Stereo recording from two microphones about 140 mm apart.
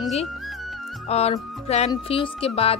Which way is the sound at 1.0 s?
45° left (ahead or behind).